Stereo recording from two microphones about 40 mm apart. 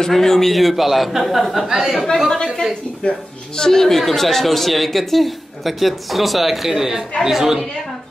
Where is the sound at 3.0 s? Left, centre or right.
Left.